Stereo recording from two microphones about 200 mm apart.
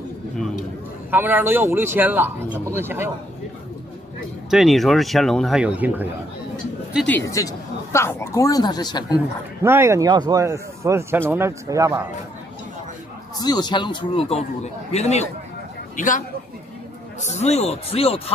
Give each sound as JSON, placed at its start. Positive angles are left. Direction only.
{"t": 1.1, "sound": "a man's voice", "side_deg": -10}
{"t": 4.5, "sound": "speech", "side_deg": 0}
{"t": 7.1, "sound": "speech", "side_deg": 15}
{"t": 9.1, "sound": "a man's voice", "side_deg": -10}
{"t": 13.4, "sound": "a man's voice", "side_deg": 20}
{"t": 17.2, "sound": "speech", "side_deg": 35}